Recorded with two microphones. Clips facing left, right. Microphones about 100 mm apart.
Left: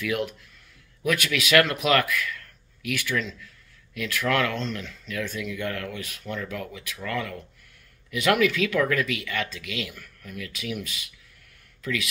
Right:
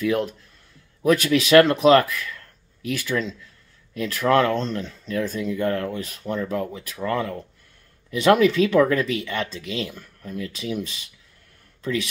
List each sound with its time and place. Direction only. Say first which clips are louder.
0.0 s speech: right 5 dB; 35° right (ahead or behind)